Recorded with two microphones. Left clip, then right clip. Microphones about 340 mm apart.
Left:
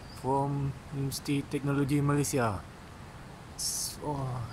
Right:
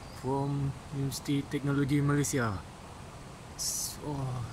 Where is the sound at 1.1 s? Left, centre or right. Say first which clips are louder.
Left 1 dB; centre.